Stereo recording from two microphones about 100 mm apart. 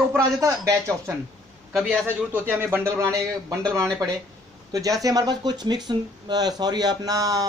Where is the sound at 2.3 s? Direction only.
20° right (ahead or behind).